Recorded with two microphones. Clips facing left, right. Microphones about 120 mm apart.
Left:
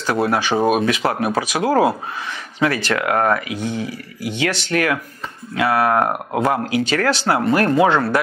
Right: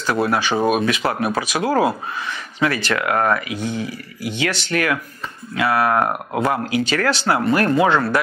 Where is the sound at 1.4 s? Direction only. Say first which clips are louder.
Left 2 dB; 50° left (ahead or behind).